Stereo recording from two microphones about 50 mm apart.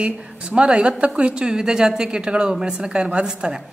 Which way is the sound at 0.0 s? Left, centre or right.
Right.